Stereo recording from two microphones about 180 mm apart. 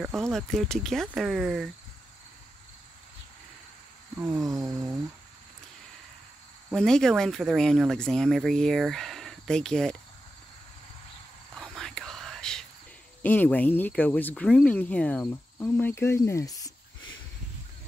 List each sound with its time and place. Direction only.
0.0 s speech: centre (ahead or behind)
4.2 s a sound: 15° right (ahead or behind)
6.7 s speech: 5° left (ahead or behind)
11.5 s whispering: centre (ahead or behind)
13.2 s speech: 10° left (ahead or behind)